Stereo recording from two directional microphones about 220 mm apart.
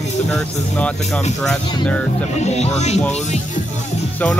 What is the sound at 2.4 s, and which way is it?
Speech, 30° left (ahead or behind).